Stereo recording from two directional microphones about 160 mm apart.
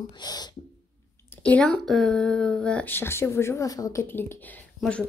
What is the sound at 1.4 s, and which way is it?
Speech, 5° left (ahead or behind).